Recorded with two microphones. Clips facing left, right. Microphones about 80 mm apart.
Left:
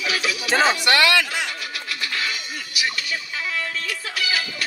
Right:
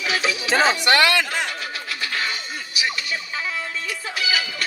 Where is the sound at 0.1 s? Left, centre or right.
Right.